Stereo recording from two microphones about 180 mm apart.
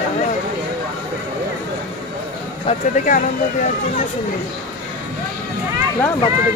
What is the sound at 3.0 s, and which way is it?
Speech, 45° left (ahead or behind).